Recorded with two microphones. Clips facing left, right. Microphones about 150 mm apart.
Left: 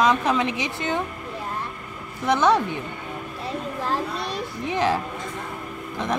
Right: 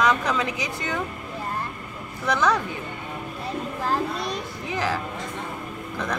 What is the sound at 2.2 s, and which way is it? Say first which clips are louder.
Speech: left 3 dB; 25° left (ahead or behind).